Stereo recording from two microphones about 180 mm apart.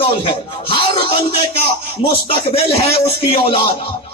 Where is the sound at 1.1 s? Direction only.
60° right (ahead or behind).